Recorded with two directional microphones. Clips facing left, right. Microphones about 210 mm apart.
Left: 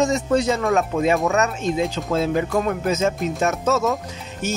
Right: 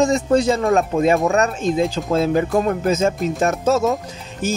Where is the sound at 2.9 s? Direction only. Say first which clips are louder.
Right 3 dB; 30° right (ahead or behind).